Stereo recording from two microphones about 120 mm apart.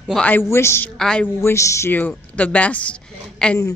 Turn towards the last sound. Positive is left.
turn(degrees=10)  # may be behind; listen again after turning